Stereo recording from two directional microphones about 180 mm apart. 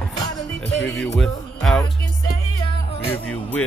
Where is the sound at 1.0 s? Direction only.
Centre (ahead or behind).